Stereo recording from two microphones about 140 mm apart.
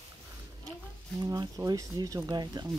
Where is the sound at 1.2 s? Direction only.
25° right (ahead or behind).